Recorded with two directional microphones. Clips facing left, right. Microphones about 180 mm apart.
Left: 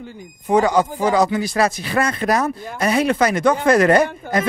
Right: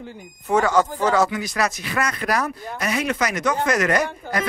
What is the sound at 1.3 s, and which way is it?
Speech, 30° left (ahead or behind).